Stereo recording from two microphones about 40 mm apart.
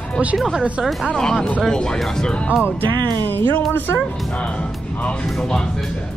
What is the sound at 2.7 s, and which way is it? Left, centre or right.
Speech, left.